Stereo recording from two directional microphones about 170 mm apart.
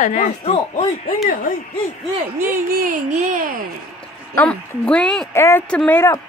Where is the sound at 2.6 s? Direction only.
55° right (ahead or behind).